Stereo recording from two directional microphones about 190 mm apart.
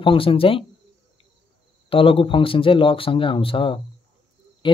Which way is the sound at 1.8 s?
30° left (ahead or behind).